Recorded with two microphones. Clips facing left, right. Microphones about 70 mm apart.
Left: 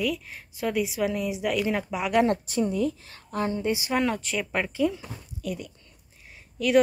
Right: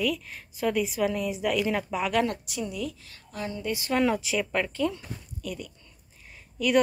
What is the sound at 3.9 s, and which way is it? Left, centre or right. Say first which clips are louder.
Speech: right 5 dB; centre.